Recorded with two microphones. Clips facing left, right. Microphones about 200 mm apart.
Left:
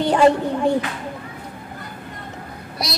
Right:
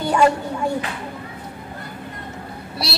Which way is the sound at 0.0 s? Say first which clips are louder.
Left 3 dB; 35° left (ahead or behind).